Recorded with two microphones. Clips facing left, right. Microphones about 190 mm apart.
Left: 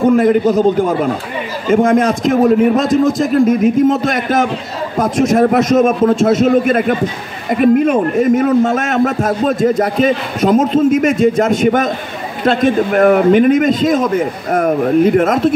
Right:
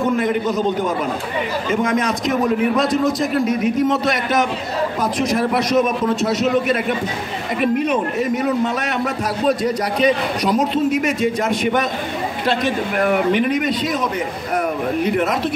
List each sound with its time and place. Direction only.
0.0 s a man's voice: 45° left (ahead or behind)